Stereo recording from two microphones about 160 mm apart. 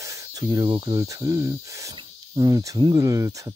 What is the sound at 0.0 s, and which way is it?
Speech, 20° right (ahead or behind).